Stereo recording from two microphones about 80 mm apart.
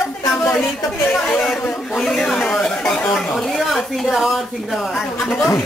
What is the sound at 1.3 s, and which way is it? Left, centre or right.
Speech, centre.